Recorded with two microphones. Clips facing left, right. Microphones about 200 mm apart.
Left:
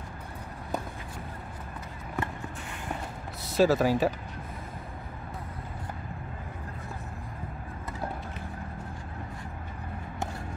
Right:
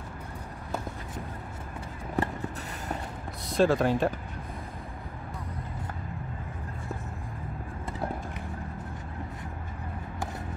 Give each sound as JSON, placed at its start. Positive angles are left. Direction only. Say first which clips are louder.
{"t": 2.2, "sound": "vehicle", "louder": "right 4 dB", "side_deg": -35}
{"t": 3.4, "sound": "speech", "louder": "left 1 dB", "side_deg": 5}